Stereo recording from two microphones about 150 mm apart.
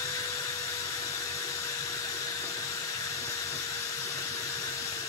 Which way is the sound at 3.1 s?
20° left (ahead or behind).